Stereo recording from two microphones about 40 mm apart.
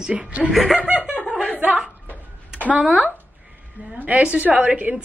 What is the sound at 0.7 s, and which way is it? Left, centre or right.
Speech, right.